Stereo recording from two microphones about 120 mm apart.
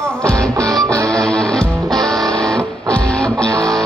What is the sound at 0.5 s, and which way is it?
Music, 30° right (ahead or behind).